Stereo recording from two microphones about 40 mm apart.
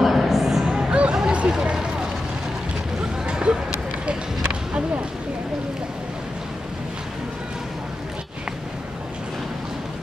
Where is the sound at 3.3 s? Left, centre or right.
Right.